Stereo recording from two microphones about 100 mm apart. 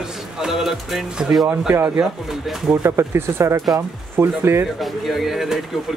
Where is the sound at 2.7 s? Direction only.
25° right (ahead or behind).